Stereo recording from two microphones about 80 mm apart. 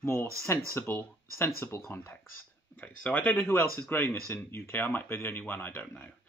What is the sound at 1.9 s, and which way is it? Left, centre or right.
Speech, left.